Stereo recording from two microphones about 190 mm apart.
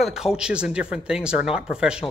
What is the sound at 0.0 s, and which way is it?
Speech, centre (ahead or behind).